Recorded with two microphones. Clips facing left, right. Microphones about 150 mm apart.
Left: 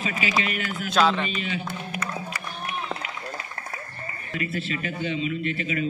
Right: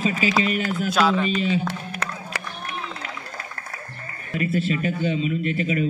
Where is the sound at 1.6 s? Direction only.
90° right.